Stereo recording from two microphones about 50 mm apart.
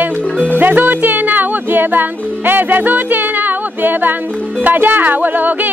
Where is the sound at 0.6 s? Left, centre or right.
Right.